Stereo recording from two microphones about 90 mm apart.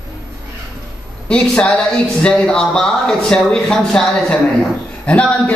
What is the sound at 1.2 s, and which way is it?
A man's voice, 10° left (ahead or behind).